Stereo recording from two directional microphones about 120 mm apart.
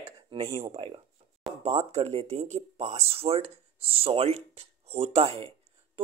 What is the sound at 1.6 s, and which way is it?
Speech, 65° right (ahead or behind).